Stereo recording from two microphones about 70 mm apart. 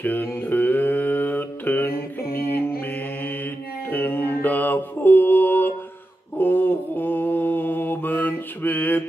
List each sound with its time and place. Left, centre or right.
0.0 s mantra: left
3.9 s mantra: left